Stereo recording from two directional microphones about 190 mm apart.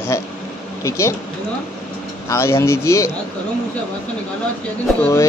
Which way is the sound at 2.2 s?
15° left (ahead or behind).